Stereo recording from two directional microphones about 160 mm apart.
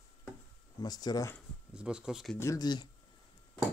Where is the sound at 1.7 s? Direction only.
5° right (ahead or behind).